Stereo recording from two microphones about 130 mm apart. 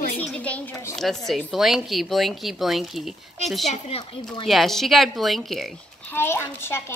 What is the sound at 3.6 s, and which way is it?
Speech, 60° left (ahead or behind).